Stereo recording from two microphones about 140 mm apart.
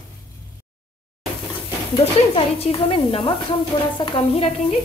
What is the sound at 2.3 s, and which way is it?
A woman's voice, 45° left (ahead or behind).